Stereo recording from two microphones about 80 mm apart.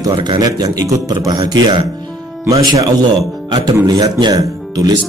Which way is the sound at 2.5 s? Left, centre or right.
Right.